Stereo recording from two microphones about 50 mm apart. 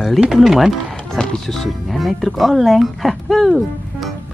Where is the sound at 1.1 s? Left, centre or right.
Centre.